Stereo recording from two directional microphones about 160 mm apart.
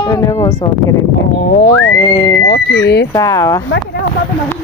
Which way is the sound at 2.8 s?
90° left.